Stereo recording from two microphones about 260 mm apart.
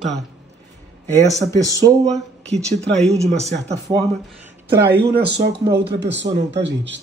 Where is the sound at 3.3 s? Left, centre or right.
Right.